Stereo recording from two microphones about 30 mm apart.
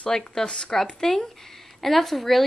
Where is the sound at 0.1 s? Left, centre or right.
Left.